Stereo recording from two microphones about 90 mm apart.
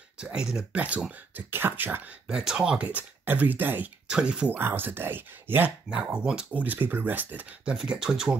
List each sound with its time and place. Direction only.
0.2 s speech: 10° right (ahead or behind)
2.2 s speech: 5° right (ahead or behind)
4.1 s speech: 10° right (ahead or behind)
4.6 s speech: 25° right (ahead or behind)
5.9 s speech: 10° right (ahead or behind)